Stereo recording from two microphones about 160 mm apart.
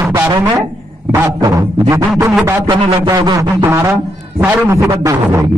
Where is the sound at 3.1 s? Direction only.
25° right (ahead or behind).